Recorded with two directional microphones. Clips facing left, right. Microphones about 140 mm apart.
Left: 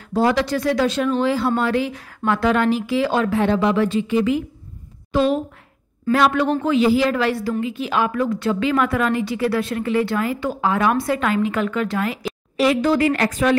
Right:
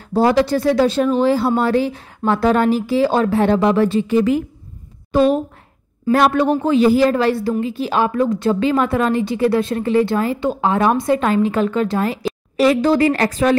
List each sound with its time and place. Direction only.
0.1 s speech: 35° right (ahead or behind)
6.1 s a woman's voice: 45° right (ahead or behind)